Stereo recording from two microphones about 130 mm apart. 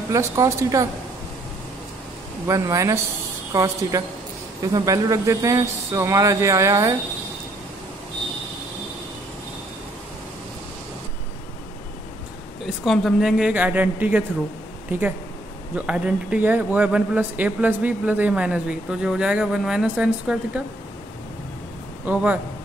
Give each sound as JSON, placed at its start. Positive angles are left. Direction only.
{"t": 0.1, "sound": "speech", "side_deg": -25}
{"t": 2.4, "sound": "speech", "side_deg": -25}
{"t": 12.6, "sound": "speech", "side_deg": 0}
{"t": 13.5, "sound": "speech", "side_deg": -15}
{"t": 22.0, "sound": "speech", "side_deg": -10}